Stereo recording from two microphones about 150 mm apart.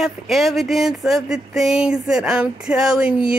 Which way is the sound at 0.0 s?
Centre (ahead or behind).